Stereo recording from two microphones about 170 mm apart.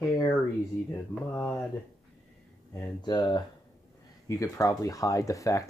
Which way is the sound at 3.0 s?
25° left (ahead or behind).